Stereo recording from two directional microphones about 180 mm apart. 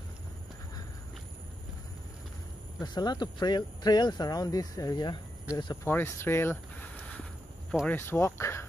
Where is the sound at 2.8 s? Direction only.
25° left (ahead or behind).